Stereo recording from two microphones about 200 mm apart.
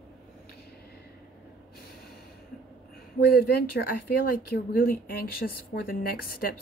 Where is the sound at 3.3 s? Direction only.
50° left (ahead or behind).